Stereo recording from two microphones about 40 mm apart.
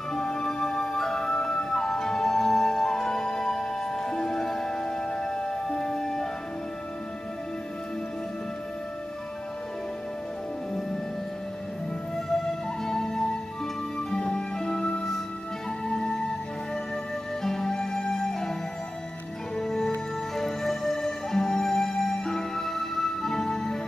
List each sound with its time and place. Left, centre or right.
0.1 s music: centre
12.8 s music: centre
17.4 s music: centre